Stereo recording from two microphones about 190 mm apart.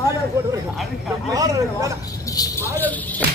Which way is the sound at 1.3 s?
20° right (ahead or behind).